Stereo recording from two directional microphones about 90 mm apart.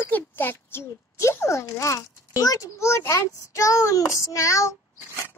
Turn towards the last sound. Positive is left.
turn(degrees=35)  # may be behind; listen again after turning